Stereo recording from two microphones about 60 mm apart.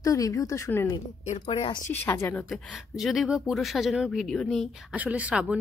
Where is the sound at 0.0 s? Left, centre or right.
Left.